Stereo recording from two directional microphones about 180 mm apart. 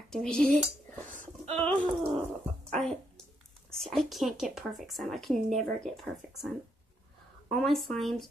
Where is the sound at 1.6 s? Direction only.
10° left (ahead or behind).